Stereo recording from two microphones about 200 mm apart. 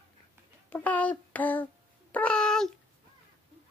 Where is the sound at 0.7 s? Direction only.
10° left (ahead or behind).